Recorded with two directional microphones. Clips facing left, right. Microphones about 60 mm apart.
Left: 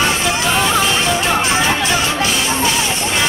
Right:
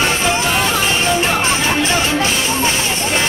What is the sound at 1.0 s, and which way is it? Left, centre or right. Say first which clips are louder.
Music: even; right.